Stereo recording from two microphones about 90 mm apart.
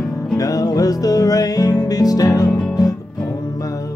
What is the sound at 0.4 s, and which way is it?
Music, 45° left (ahead or behind).